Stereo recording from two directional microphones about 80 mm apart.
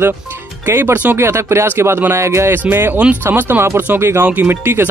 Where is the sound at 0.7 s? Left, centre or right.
Right.